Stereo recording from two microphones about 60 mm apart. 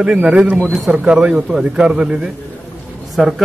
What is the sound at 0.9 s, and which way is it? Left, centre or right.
A man's voice, centre.